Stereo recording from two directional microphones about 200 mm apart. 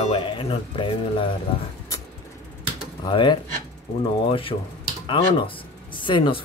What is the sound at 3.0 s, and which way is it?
Speech, 25° left (ahead or behind).